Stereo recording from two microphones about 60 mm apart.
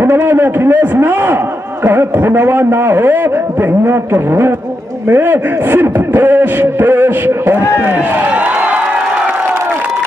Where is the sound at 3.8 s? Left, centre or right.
Right.